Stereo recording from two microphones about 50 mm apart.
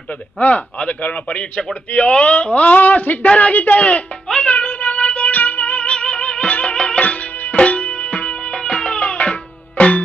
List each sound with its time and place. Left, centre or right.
0.4 s speech: left
4.3 s music: left
7.0 s music: left